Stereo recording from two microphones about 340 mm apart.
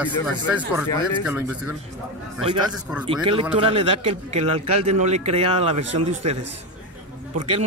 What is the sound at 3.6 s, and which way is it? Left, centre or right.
A man's voice, centre.